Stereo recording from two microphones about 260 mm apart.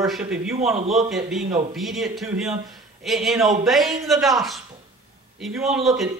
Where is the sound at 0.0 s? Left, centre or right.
Centre.